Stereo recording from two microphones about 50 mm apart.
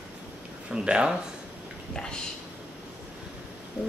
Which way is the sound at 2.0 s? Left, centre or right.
Centre.